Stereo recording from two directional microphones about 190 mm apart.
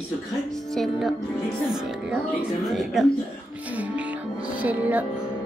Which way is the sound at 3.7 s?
10° right (ahead or behind).